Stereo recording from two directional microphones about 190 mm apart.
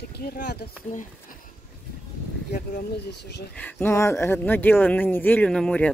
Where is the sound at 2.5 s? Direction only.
60° left (ahead or behind).